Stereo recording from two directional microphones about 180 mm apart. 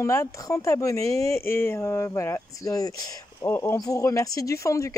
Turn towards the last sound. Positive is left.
turn(degrees=15)  # may be behind; listen again after turning